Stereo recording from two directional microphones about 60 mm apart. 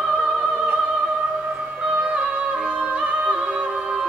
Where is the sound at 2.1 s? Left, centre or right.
Right.